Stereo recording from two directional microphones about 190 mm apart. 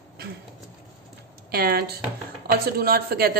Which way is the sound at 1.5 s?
55° right (ahead or behind).